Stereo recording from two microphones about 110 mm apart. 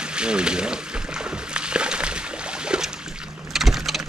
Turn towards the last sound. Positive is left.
turn(degrees=0)  # may be behind; listen again after turning